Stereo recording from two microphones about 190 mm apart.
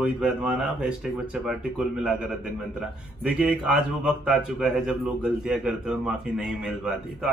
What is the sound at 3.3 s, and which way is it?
A man's voice, 5° right (ahead or behind).